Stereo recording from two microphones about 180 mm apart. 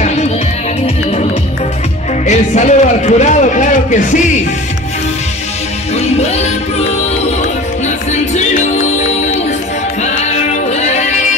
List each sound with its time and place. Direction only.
2.2 s a man's voice: 40° left (ahead or behind)
5.9 s music: 35° left (ahead or behind)
8.1 s music: 40° left (ahead or behind)